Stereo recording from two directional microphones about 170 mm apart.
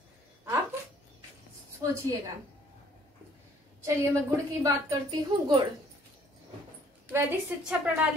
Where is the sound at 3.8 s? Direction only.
20° right (ahead or behind).